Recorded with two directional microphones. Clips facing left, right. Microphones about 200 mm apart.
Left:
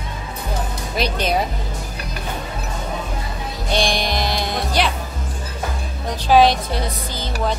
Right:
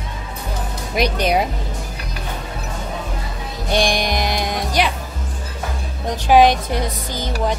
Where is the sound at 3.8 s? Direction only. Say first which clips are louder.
Right 1 dB; 15° right (ahead or behind).